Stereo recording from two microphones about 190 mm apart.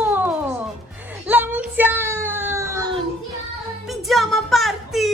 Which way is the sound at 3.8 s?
Centre (ahead or behind).